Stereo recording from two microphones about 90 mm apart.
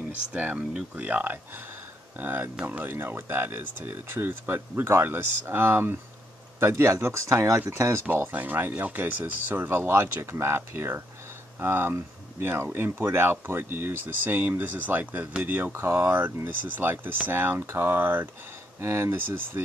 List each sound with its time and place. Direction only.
0.3 s speech: 15° right (ahead or behind); by 8.0 s 30° right (ahead or behind)
8.1 s speech: 20° right (ahead or behind)